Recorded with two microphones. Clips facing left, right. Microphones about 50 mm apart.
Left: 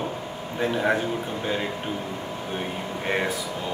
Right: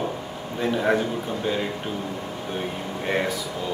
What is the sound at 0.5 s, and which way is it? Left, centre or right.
Speech, centre.